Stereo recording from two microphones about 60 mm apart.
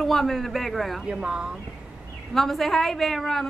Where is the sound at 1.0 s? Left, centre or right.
Centre.